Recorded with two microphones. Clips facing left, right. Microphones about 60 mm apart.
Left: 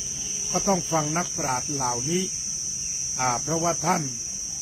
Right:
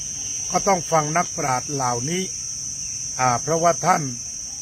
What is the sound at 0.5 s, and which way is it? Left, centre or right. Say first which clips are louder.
Cricket: right 5 dB; right.